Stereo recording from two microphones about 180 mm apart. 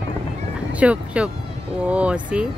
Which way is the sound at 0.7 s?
5° right (ahead or behind).